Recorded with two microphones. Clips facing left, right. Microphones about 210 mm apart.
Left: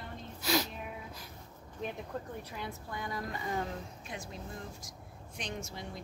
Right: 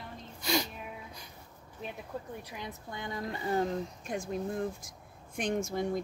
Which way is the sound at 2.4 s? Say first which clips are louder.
Even; 15° right (ahead or behind).